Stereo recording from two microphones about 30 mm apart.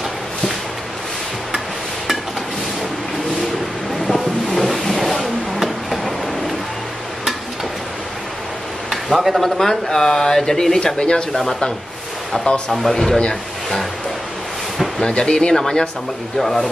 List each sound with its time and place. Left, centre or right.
4.2 s a sound: centre
4.8 s vehicle: centre
8.9 s a sound: centre
9.6 s speech: centre
11.0 s speech: left
12.8 s speech: centre
15.0 s speech: left
16.3 s speech: centre